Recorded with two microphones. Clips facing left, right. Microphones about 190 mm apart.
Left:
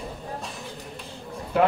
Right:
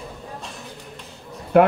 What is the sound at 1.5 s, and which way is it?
Speech, 60° right (ahead or behind).